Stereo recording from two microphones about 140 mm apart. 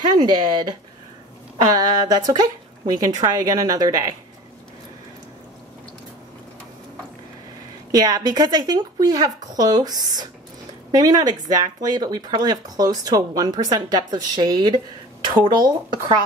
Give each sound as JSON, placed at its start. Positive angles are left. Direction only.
{"t": 0.1, "sound": "speech", "side_deg": -30}
{"t": 7.9, "sound": "speech", "side_deg": -30}